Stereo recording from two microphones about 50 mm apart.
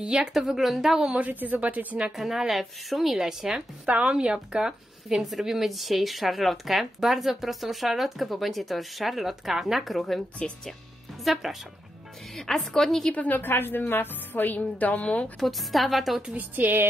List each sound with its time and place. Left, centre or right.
0.0 s a woman's voice: centre
1.1 s speech: right
2.1 s a woman's voice: centre
3.8 s a woman's voice: right
5.1 s speech: centre
11.4 s speech: centre
12.4 s speech: centre
13.1 s a woman's voice: left
15.4 s speech: centre
16.3 s speech: right